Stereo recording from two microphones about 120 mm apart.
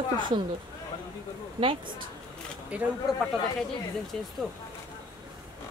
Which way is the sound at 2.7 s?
10° right (ahead or behind).